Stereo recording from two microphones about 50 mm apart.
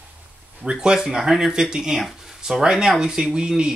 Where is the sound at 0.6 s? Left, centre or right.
Centre.